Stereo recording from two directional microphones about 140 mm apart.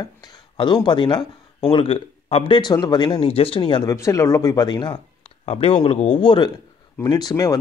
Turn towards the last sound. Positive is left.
turn(degrees=25)  # may be behind; listen again after turning